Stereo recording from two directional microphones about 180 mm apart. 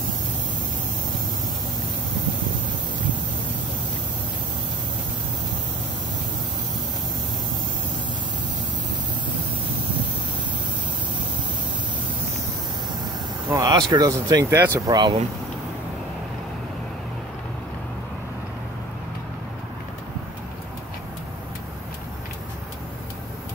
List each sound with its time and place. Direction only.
13.5 s speech: 20° right (ahead or behind)